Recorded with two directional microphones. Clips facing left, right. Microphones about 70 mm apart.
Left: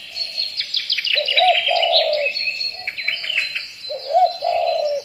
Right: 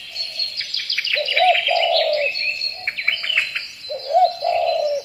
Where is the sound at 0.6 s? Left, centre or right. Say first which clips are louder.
Even; right.